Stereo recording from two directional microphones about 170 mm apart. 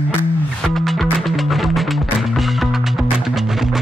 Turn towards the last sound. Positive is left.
turn(degrees=0)  # may be behind; listen again after turning